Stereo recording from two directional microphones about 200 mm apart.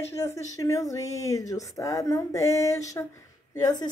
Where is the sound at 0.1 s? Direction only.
15° left (ahead or behind).